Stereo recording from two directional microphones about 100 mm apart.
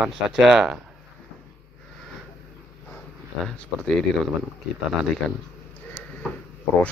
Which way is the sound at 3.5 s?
5° left (ahead or behind).